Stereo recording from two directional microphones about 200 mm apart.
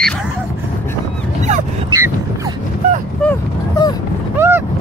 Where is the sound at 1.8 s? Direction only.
15° right (ahead or behind).